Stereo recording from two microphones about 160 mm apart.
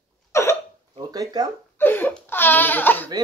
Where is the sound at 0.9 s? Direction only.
25° right (ahead or behind).